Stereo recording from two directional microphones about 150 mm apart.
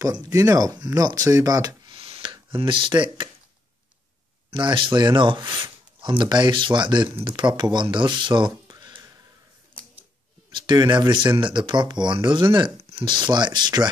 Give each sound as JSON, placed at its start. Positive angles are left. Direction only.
{"t": 0.2, "sound": "speech", "side_deg": -25}
{"t": 1.9, "sound": "a sound", "side_deg": -40}
{"t": 4.5, "sound": "speech", "side_deg": -35}
{"t": 10.5, "sound": "speech", "side_deg": -30}